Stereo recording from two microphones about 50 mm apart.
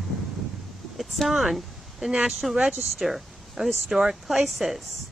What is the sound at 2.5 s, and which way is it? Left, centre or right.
Speech, centre.